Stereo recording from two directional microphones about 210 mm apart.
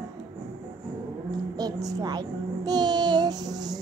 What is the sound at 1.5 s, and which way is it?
Child singing, 20° right (ahead or behind).